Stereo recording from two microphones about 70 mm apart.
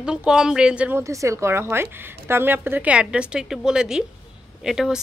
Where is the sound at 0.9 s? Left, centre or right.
Right.